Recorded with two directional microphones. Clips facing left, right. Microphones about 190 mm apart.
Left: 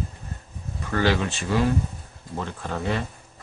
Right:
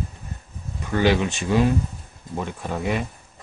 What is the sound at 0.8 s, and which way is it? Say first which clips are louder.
Speech: right 3 dB; 15° right (ahead or behind).